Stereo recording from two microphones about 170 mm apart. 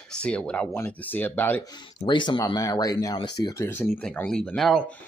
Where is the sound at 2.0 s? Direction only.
25° left (ahead or behind).